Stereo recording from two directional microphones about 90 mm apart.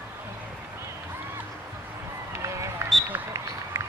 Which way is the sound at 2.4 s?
35° right (ahead or behind).